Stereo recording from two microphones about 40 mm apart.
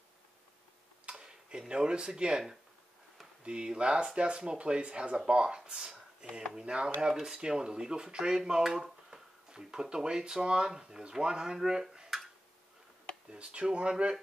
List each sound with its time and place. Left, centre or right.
1.1 s speech: centre
3.4 s speech: right
6.5 s speech: right
8.6 s dishes: centre
9.5 s speech: centre
13.3 s speech: right